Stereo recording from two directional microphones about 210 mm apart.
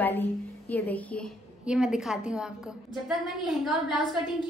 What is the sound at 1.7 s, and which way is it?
Speech, 5° right (ahead or behind).